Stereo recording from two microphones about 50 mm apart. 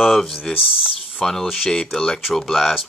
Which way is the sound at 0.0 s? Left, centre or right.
Centre.